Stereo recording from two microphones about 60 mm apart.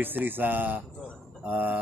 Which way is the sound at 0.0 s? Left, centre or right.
Right.